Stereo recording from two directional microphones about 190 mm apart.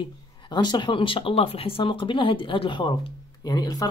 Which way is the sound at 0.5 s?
20° left (ahead or behind).